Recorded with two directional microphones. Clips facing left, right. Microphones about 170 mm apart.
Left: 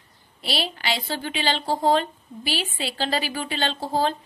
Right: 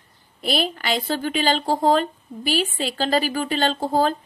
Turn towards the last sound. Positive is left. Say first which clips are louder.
# right 4 dB
turn(degrees=-45)  # may be behind; listen again after turning